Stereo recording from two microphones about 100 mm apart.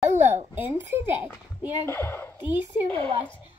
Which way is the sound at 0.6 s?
20° right (ahead or behind).